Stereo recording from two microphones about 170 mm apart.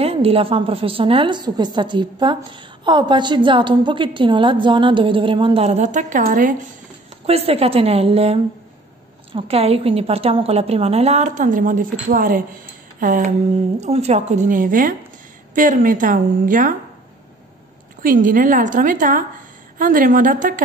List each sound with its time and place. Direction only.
0.0 s a woman's voice: 35° right (ahead or behind); by 6.5 s 50° right (ahead or behind)
7.2 s a woman's voice: 35° right (ahead or behind); by 13.3 s 55° right (ahead or behind)
13.7 s a woman's voice: 40° right (ahead or behind)
18.0 s a woman's voice: 50° right (ahead or behind)